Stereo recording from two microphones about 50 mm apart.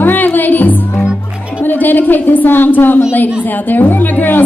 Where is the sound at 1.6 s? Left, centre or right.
Left.